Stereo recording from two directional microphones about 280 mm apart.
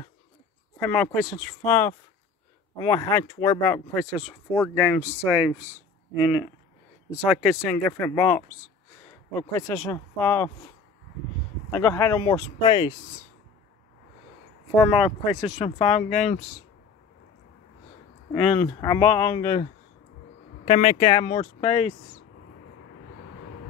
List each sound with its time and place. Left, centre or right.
0.7 s speech: centre
7.7 s speech: centre
11.7 s speech: centre
15.6 s speech: left
16.0 s speech: centre
18.3 s speech: centre